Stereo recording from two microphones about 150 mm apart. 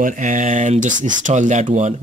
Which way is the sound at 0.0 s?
55° right (ahead or behind).